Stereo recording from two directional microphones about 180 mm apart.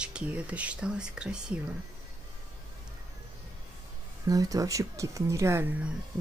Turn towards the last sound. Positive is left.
turn(degrees=-10)  # may be behind; listen again after turning